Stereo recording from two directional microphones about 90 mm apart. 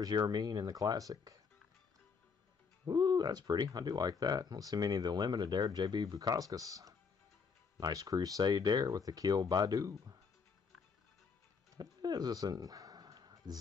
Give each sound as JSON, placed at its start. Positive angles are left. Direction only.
{"t": 0.0, "sound": "speech", "side_deg": -50}
{"t": 2.9, "sound": "speech", "side_deg": -45}
{"t": 11.7, "sound": "a sound", "side_deg": -50}